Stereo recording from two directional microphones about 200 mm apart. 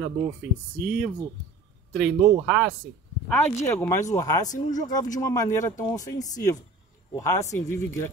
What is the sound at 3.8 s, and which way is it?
Speech, 15° left (ahead or behind).